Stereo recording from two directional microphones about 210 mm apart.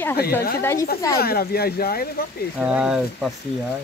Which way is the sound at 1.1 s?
45° left (ahead or behind).